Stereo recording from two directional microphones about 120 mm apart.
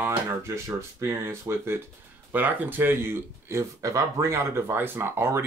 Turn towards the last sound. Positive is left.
turn(degrees=-20)  # may be behind; listen again after turning